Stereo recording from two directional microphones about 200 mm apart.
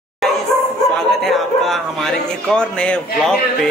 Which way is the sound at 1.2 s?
Centre (ahead or behind).